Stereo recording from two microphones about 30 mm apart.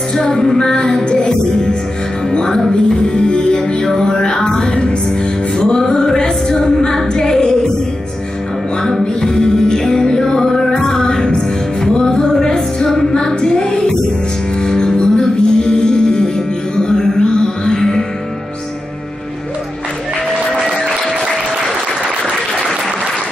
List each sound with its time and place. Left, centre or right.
0.1 s music: centre
3.3 s music: left
4.7 s music: left
9.2 s music: left